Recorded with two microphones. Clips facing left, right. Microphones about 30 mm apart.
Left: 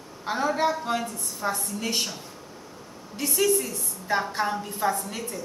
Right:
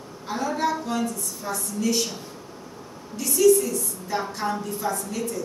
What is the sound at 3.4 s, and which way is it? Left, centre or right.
A woman's voice, left.